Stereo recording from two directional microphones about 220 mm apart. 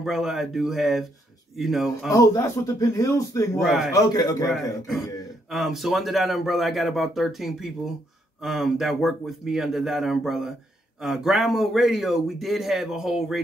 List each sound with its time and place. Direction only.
0.0 s speech: centre (ahead or behind)
2.1 s speech: 15° left (ahead or behind)
3.6 s speech: centre (ahead or behind)
3.9 s speech: 15° left (ahead or behind)
4.5 s speech: centre (ahead or behind)